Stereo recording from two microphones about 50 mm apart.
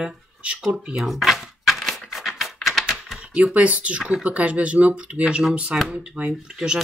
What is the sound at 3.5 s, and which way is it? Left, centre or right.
Speech, right.